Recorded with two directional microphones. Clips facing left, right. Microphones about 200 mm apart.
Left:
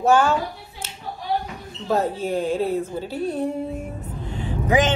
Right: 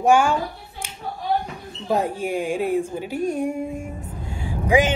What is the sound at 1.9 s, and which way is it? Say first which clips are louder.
Speech: even; 15° right (ahead or behind).